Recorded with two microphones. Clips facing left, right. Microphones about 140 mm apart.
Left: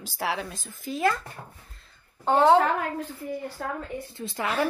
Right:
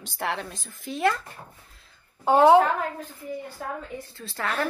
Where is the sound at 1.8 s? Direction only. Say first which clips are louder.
Even; 10° right (ahead or behind).